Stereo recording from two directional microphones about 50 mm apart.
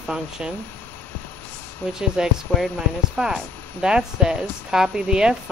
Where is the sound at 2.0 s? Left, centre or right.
Centre.